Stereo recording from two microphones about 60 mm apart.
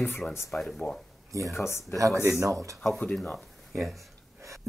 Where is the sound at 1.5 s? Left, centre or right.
Left.